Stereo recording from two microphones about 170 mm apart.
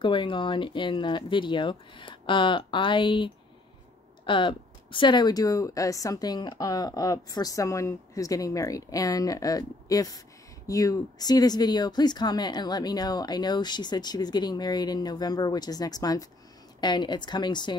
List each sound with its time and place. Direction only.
0.0 s speech: 30° left (ahead or behind)
4.3 s speech: 30° left (ahead or behind)